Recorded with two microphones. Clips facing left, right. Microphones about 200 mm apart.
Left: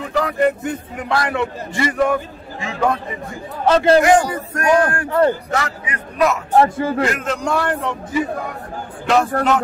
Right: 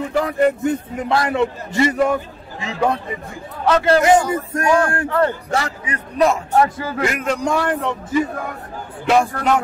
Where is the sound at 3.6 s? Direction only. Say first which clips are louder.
Left 2 dB; 25° left (ahead or behind).